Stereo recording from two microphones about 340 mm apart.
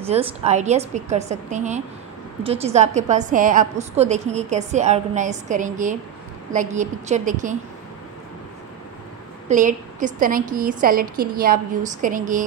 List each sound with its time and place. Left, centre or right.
0.0 s a woman's voice: centre
9.5 s a woman's voice: right